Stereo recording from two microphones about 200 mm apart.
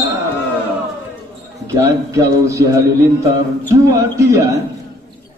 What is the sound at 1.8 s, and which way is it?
A man's voice, 15° right (ahead or behind).